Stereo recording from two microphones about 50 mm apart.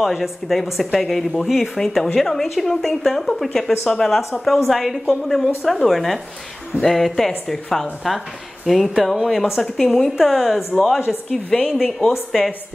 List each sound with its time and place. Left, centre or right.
0.0 s speech: centre